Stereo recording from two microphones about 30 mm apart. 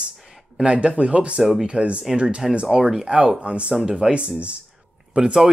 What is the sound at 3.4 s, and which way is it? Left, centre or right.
Speech, right.